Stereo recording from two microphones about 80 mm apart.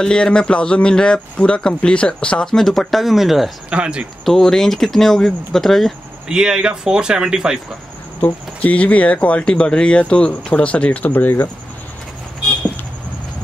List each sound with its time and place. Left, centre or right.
0.0 s speech: centre
3.7 s speech: centre
4.2 s speech: centre
6.2 s speech: centre
8.2 s speech: centre